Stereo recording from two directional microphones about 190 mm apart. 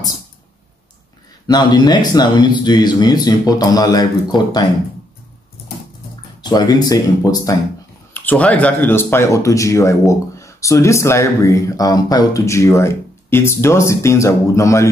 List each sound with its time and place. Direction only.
1.5 s speech: 20° left (ahead or behind)
6.4 s speech: 20° left (ahead or behind)
8.1 s speech: 10° left (ahead or behind)